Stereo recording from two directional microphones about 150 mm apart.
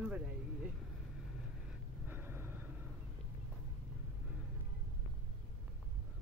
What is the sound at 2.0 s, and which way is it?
Vehicle, 15° right (ahead or behind).